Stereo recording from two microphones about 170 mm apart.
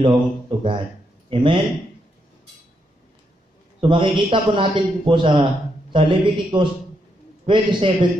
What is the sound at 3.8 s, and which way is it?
A man's voice, 30° right (ahead or behind).